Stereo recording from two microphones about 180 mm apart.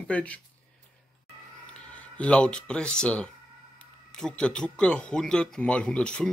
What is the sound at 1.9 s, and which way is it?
Speech, 5° left (ahead or behind).